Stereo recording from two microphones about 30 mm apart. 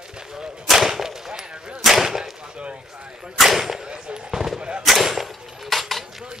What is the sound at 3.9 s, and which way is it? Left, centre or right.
Speech, right.